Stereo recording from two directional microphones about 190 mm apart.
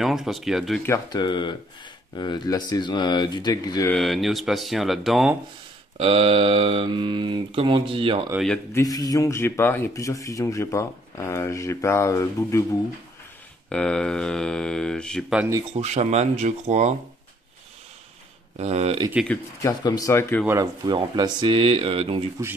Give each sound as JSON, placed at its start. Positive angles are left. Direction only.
{"t": 0.0, "sound": "speech", "side_deg": 0}
{"t": 0.8, "sound": "speech", "side_deg": 20}
{"t": 3.9, "sound": "speech", "side_deg": 0}
{"t": 5.9, "sound": "speech", "side_deg": -30}
{"t": 8.7, "sound": "speech", "side_deg": 20}
{"t": 13.7, "sound": "speech", "side_deg": 5}
{"t": 15.7, "sound": "speech", "side_deg": -35}
{"t": 18.6, "sound": "speech", "side_deg": -35}
{"t": 19.2, "sound": "speech", "side_deg": 10}
{"t": 19.8, "sound": "speech", "side_deg": 20}
{"t": 20.4, "sound": "speech", "side_deg": -20}